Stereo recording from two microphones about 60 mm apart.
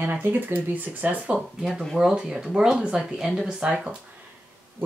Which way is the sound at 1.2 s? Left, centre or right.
Centre.